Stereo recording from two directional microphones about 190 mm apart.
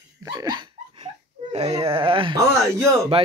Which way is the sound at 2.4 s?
15° right (ahead or behind).